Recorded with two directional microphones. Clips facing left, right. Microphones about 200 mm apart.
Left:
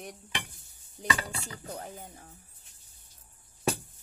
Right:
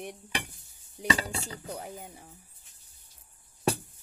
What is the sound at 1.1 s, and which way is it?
Dishes, 30° right (ahead or behind).